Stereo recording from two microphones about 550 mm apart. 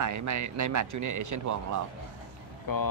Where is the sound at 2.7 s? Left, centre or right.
Left.